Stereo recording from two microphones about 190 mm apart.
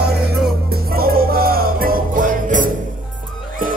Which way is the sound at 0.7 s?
50° right (ahead or behind).